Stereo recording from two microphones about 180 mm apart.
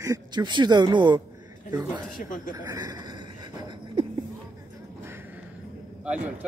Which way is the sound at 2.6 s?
20° right (ahead or behind).